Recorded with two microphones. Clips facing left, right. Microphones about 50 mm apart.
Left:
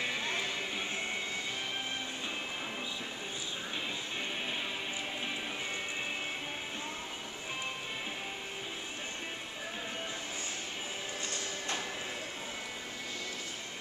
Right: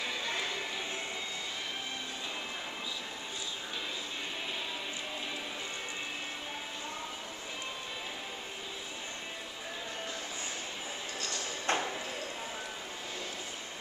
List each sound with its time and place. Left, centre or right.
11.6 s clip-clop: right